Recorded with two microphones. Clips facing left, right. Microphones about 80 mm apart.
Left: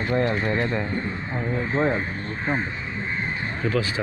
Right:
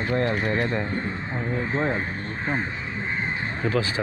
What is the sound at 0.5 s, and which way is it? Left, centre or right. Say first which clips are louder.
Speech: even; centre.